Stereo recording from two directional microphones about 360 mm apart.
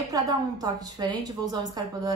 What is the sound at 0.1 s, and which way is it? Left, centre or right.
A woman's voice, centre.